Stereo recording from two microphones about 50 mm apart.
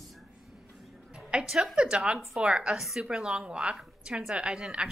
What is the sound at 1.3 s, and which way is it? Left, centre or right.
A woman's voice, centre.